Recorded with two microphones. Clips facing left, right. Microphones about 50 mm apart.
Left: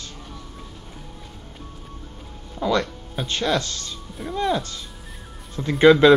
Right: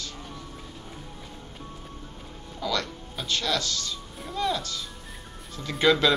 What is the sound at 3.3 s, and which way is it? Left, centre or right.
A woman's voice, left.